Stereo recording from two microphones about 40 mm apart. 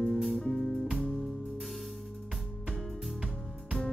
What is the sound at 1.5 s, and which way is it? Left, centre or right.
Music, centre.